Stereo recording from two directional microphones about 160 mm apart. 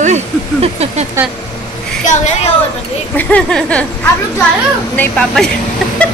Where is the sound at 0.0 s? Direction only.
40° right (ahead or behind).